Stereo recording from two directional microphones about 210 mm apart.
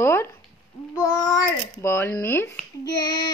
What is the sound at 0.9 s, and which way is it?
A child's voice, 20° left (ahead or behind).